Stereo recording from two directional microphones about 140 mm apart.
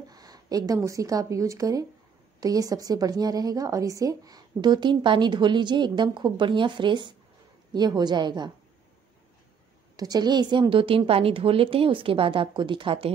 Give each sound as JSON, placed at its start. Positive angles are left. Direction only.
{"t": 0.1, "sound": "a sound", "side_deg": -30}
{"t": 0.7, "sound": "a woman's voice", "side_deg": -25}
{"t": 9.9, "sound": "a woman's voice", "side_deg": -30}